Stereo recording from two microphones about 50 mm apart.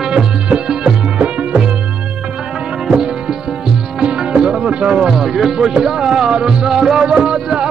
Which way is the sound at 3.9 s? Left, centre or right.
Centre.